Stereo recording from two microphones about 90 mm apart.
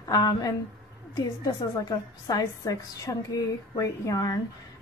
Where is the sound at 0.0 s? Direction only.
45° left (ahead or behind).